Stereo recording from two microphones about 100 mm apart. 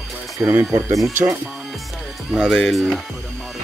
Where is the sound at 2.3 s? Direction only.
5° left (ahead or behind).